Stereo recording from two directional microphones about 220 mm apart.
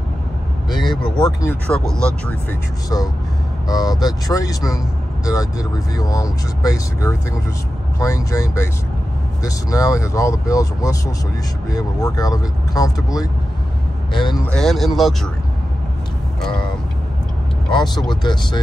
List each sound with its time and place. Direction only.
0.8 s speech: 5° left (ahead or behind)
3.6 s speech: 15° left (ahead or behind)
14.4 s speech: 5° left (ahead or behind)
18.2 s speech: 20° left (ahead or behind)